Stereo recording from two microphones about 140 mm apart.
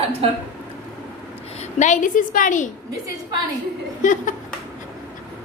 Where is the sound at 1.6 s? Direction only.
60° left (ahead or behind).